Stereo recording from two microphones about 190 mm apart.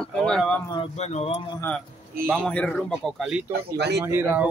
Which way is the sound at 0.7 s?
30° left (ahead or behind).